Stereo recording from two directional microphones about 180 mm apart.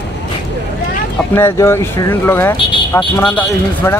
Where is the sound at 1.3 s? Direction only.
15° left (ahead or behind).